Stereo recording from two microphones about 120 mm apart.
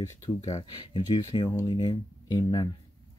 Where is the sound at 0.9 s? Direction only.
50° left (ahead or behind).